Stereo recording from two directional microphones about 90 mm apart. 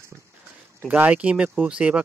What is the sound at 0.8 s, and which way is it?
Speech, 20° right (ahead or behind).